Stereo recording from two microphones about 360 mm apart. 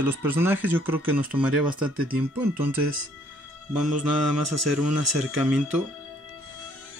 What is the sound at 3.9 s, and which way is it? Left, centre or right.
Mantra, right.